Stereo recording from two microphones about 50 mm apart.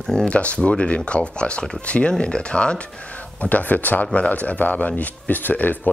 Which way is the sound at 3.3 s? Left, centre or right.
Left.